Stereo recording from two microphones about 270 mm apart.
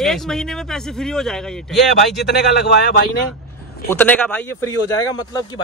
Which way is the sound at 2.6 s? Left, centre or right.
Left.